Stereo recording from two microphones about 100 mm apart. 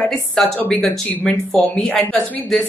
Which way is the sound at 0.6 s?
15° left (ahead or behind).